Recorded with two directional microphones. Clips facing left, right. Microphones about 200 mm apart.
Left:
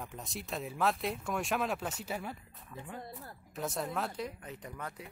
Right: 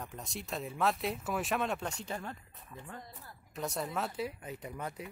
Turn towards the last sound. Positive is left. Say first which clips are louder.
# right 3 dB
turn(degrees=-15)  # may be behind; listen again after turning